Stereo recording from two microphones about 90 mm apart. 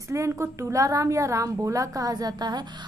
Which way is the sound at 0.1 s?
35° right (ahead or behind).